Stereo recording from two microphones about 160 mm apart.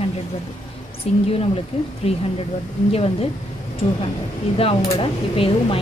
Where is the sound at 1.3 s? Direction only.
35° left (ahead or behind).